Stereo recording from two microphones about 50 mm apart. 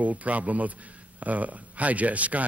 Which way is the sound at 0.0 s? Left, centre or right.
Right.